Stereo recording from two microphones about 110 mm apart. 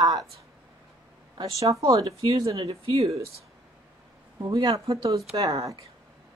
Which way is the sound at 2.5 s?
60° right (ahead or behind).